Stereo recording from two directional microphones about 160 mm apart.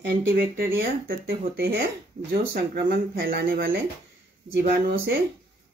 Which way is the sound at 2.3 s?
70° right (ahead or behind).